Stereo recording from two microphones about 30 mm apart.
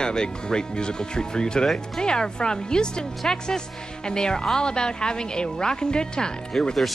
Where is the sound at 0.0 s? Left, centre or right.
Left.